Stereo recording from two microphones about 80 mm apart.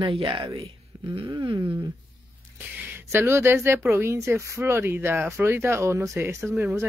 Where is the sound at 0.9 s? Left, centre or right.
Right.